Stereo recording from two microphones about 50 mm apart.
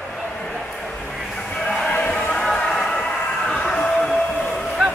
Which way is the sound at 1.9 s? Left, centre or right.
Left.